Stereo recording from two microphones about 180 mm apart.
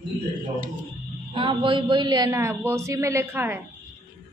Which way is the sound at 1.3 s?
25° right (ahead or behind).